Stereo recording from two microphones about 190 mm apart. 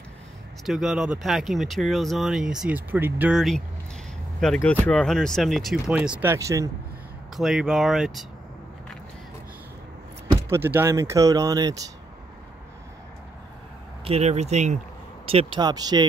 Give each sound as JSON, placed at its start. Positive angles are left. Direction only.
{"t": 0.7, "sound": "speech", "side_deg": 0}
{"t": 7.3, "sound": "speech", "side_deg": 0}
{"t": 10.3, "sound": "speech", "side_deg": -10}
{"t": 14.0, "sound": "speech", "side_deg": -35}